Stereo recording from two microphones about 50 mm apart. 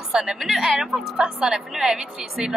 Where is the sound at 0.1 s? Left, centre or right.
Centre.